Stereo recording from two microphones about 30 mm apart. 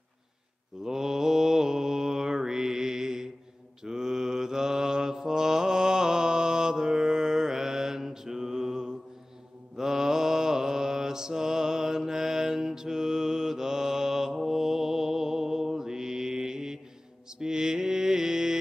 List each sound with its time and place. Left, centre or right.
0.8 s mantra: centre